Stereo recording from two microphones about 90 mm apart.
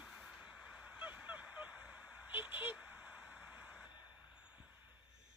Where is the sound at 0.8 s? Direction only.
15° right (ahead or behind).